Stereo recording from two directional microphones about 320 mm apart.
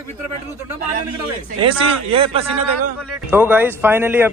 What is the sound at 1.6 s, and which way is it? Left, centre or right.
Speech, centre.